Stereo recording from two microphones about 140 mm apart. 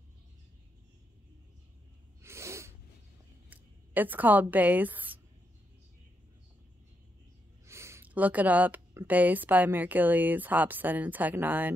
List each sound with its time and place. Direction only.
2.2 s sneeze: 20° right (ahead or behind)
3.4 s a sound: 15° right (ahead or behind)
7.6 s a woman's voice: 20° right (ahead or behind)